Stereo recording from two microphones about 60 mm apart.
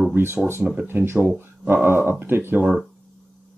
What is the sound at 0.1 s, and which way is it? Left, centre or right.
Speech, right.